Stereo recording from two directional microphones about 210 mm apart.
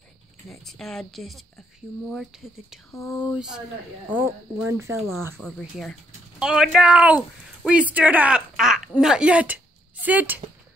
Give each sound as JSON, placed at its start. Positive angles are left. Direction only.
{"t": 0.5, "sound": "speech", "side_deg": 0}
{"t": 4.9, "sound": "speech", "side_deg": 0}